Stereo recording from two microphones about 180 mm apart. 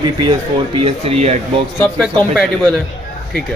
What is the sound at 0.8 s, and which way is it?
Speech, 35° right (ahead or behind).